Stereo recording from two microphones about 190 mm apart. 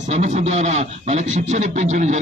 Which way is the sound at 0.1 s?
35° right (ahead or behind).